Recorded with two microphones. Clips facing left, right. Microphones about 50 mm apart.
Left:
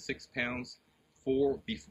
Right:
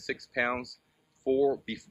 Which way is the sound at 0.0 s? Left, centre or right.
Right.